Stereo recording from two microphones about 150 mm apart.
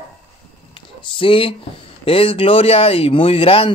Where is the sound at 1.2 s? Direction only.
35° left (ahead or behind).